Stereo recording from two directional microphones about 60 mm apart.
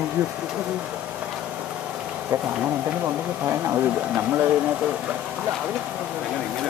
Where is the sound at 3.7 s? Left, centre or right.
Right.